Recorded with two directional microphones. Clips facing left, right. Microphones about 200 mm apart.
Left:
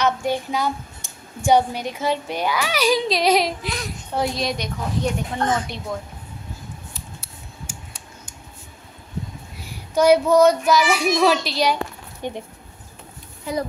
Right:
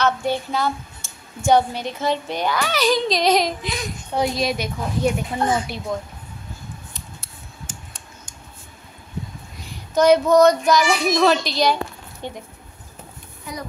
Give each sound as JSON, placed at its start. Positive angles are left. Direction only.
{"t": 0.0, "sound": "speech", "side_deg": 10}
{"t": 7.6, "sound": "a sound", "side_deg": 10}
{"t": 9.6, "sound": "child singing", "side_deg": 10}